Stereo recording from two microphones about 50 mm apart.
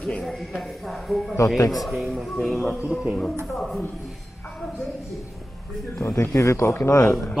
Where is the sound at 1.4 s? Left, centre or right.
Left.